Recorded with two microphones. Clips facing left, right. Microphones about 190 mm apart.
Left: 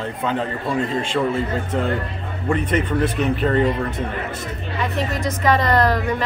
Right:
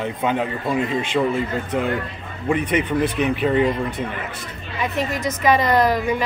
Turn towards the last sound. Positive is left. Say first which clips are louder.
# right 1 dB
turn(degrees=-20)  # may be behind; listen again after turning